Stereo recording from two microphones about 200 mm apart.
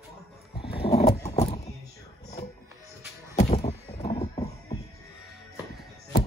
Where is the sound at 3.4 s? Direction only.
35° left (ahead or behind).